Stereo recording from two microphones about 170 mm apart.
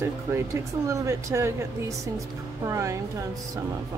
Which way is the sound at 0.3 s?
15° right (ahead or behind).